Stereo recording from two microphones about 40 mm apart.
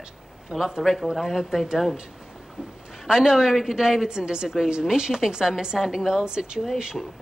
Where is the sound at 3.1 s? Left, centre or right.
Centre.